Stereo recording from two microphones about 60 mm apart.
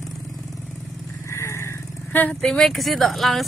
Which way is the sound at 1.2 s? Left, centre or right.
Left.